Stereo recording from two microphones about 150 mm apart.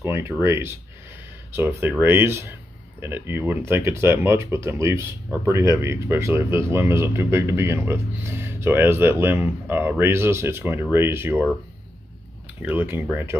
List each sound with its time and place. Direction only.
0.0 s speech: 15° right (ahead or behind)
12.6 s speech: 15° right (ahead or behind)